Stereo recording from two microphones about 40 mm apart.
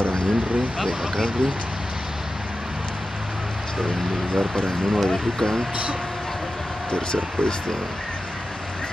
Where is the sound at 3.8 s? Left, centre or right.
Centre.